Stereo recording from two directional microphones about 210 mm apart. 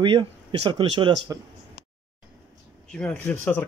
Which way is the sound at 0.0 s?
25° right (ahead or behind).